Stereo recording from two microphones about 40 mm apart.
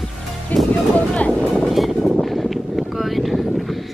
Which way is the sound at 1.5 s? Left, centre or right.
Centre.